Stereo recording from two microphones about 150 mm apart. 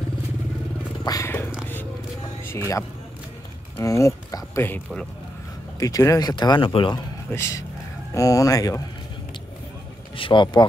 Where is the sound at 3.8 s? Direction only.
20° left (ahead or behind).